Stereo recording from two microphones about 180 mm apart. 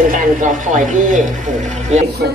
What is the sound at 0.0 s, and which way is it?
Speech, 50° right (ahead or behind).